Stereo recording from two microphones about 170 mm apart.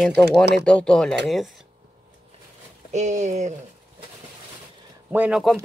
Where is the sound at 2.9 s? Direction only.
45° right (ahead or behind).